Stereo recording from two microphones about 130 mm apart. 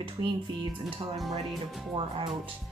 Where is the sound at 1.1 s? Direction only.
Centre (ahead or behind).